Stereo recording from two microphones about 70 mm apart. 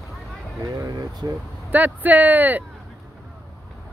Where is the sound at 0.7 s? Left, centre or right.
Right.